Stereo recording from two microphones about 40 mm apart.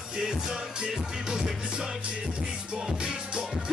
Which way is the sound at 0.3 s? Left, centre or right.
Centre.